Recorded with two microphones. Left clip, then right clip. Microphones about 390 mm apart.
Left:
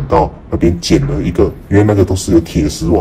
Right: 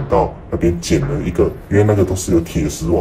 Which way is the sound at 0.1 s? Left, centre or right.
Left.